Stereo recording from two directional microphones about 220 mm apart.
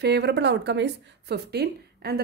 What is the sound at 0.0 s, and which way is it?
Speech, 50° right (ahead or behind).